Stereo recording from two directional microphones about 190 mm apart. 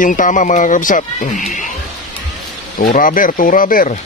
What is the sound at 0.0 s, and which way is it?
Speech, 45° left (ahead or behind).